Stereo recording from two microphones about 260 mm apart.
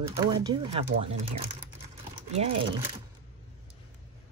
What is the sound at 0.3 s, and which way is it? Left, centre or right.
Speech, centre.